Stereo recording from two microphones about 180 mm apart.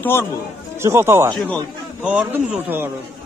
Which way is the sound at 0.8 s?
15° right (ahead or behind).